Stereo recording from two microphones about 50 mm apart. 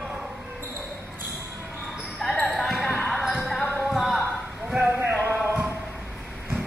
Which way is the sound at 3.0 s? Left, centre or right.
Centre.